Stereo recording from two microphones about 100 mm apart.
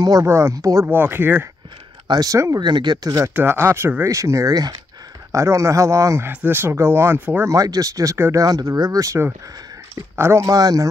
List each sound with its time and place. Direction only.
0.2 s speech: 30° right (ahead or behind)
0.8 s speech: 20° right (ahead or behind)
2.0 s speech: 40° right (ahead or behind)
2.6 s speech: 50° right (ahead or behind)
3.3 s speech: 25° right (ahead or behind)
7.5 s speech: 35° right (ahead or behind)